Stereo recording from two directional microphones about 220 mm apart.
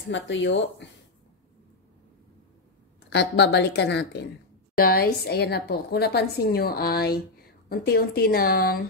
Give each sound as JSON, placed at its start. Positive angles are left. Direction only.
{"t": 0.0, "sound": "speech", "side_deg": 55}
{"t": 3.1, "sound": "a woman's voice", "side_deg": 50}